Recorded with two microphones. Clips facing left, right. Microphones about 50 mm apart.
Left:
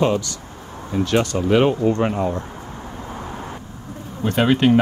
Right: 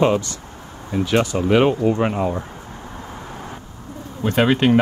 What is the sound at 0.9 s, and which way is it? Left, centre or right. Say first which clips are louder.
Speech: even; centre.